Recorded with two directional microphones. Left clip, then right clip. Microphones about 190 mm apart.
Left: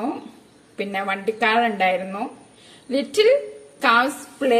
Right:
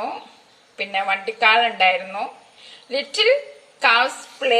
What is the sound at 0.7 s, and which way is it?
A woman's voice, 5° left (ahead or behind).